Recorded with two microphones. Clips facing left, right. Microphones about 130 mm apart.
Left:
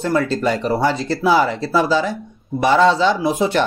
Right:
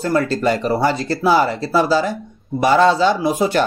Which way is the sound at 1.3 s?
45° right (ahead or behind).